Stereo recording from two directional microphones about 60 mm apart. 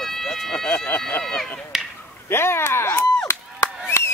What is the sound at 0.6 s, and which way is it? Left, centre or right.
Speech, left.